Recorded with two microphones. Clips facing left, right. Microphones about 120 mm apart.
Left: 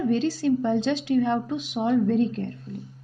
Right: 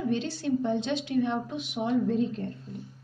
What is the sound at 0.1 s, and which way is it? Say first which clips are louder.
A woman's voice: left 6 dB; 90° left.